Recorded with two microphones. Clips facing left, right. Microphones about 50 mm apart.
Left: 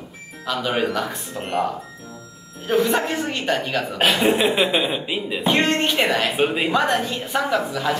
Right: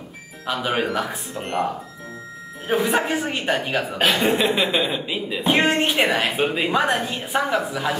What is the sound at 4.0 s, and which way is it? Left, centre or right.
Speech, centre.